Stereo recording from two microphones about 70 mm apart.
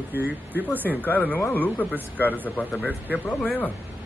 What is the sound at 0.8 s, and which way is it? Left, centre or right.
Speech, left.